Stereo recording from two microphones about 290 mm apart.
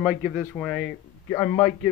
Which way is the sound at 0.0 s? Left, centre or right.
Centre.